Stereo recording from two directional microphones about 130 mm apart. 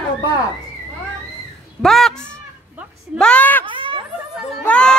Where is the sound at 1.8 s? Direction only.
Centre (ahead or behind).